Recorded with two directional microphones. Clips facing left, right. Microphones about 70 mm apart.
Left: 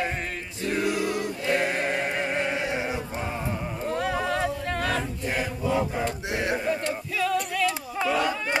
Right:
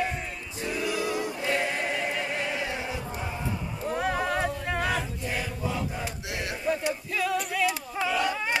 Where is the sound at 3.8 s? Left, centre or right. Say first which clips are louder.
Even; centre.